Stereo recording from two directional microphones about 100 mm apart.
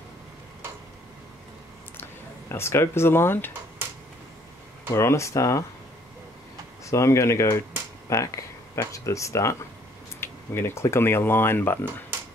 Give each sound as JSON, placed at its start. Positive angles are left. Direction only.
{"t": 2.5, "sound": "speech", "side_deg": 25}
{"t": 4.9, "sound": "speech", "side_deg": 25}
{"t": 6.9, "sound": "speech", "side_deg": 30}